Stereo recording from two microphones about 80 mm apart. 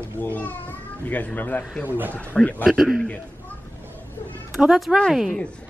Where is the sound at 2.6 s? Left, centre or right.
Centre.